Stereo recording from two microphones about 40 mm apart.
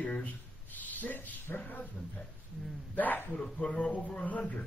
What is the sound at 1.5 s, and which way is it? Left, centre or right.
Speech, left.